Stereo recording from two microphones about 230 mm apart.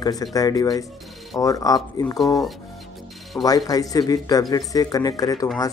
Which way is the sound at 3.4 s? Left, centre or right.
Centre.